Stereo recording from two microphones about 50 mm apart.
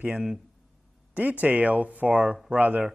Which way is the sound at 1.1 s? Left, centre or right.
Right.